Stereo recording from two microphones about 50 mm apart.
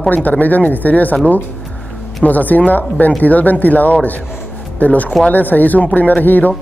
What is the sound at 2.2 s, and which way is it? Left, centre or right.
Speech, left.